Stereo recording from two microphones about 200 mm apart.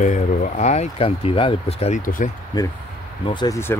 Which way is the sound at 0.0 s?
35° left (ahead or behind).